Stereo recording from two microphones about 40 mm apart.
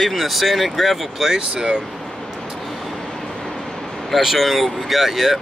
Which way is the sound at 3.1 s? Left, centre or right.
Centre.